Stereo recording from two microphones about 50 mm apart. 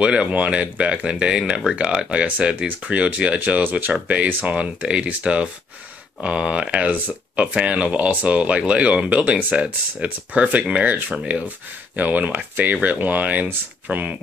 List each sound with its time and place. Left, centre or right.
0.0 s speech: centre